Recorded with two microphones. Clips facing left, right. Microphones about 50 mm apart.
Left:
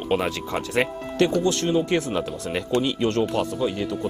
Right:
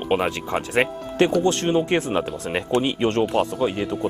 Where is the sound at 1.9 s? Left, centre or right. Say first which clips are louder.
Right 2 dB; centre.